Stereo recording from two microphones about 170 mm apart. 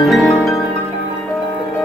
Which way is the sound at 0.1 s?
Centre (ahead or behind).